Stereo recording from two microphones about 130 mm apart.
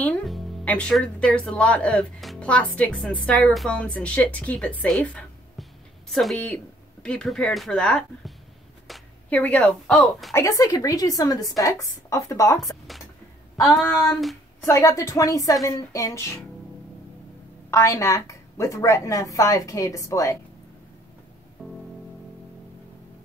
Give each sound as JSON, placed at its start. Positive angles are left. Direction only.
{"t": 0.7, "sound": "speech", "side_deg": 10}
{"t": 9.3, "sound": "speech", "side_deg": 10}
{"t": 10.3, "sound": "a woman's voice", "side_deg": 25}
{"t": 14.7, "sound": "a woman's voice", "side_deg": 25}
{"t": 17.6, "sound": "a woman's voice", "side_deg": 25}
{"t": 21.6, "sound": "music", "side_deg": -5}